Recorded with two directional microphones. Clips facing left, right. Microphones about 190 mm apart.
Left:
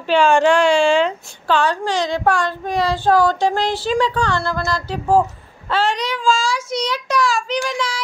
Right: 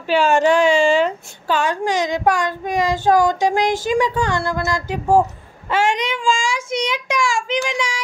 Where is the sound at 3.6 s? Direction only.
45° right (ahead or behind).